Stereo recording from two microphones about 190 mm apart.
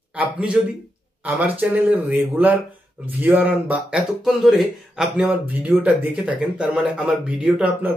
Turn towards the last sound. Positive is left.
turn(degrees=-5)  # may be behind; listen again after turning